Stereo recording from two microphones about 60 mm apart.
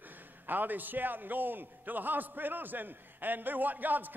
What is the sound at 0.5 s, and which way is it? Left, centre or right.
A man's voice, right.